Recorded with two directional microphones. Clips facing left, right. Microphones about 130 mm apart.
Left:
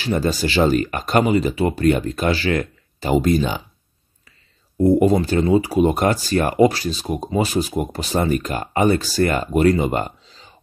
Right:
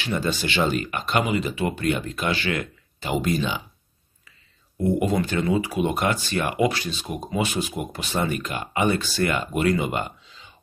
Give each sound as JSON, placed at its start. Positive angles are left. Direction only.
{"t": 0.0, "sound": "speech", "side_deg": 40}
{"t": 4.7, "sound": "speech", "side_deg": 35}